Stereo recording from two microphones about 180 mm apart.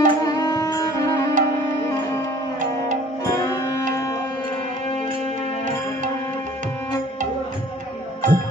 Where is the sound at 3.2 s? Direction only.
20° left (ahead or behind).